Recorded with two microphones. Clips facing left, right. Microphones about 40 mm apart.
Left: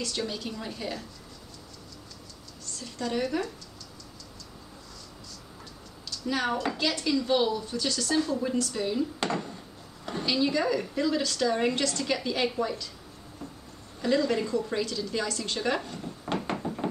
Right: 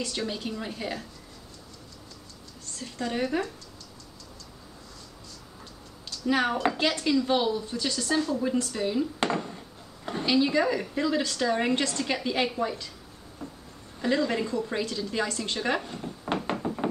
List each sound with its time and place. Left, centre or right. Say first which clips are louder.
0.3 s speech: right 2 dB; centre
2.7 s speech: even; right
6.2 s a woman's voice: right 3 dB; right
8.2 s a woman's voice: right 1 dB; centre
9.3 s a sound: right 2 dB; centre
10.0 s a woman's voice: right 3 dB; centre
14.0 s speech: even; centre
16.4 s knock: right 2 dB; centre